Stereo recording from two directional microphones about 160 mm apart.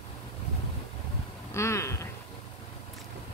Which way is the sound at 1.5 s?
15° left (ahead or behind).